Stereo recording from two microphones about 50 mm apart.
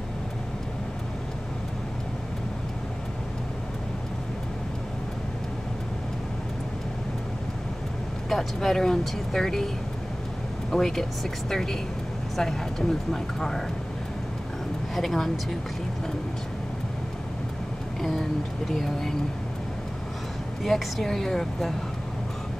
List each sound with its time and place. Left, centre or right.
8.3 s speech: centre
10.7 s speech: centre
15.0 s speech: centre
18.7 s speech: centre
20.6 s speech: centre